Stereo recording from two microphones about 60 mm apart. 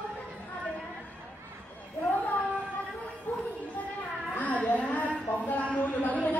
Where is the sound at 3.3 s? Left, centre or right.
Left.